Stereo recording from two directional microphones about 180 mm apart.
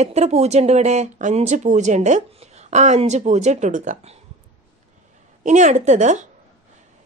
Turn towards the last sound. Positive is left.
turn(degrees=-40)  # may be behind; listen again after turning